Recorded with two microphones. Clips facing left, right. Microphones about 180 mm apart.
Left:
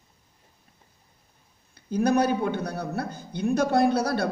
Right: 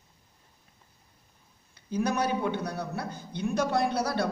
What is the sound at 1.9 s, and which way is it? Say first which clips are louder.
Speech: left 5 dB; 45° left (ahead or behind).